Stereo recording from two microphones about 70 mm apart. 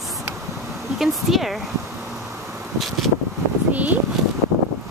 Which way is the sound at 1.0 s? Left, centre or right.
Centre.